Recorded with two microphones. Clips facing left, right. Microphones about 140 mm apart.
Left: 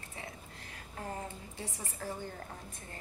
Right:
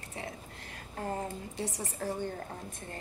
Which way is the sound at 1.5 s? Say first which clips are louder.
Right 7 dB; 75° right (ahead or behind).